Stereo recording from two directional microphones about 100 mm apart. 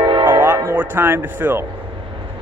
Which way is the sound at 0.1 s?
55° right (ahead or behind).